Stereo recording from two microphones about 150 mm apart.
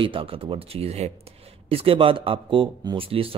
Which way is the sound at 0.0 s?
35° right (ahead or behind).